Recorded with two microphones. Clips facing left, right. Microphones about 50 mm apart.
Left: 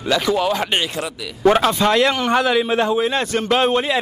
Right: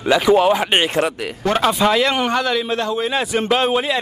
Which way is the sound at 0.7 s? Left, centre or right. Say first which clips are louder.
Right 5 dB; right.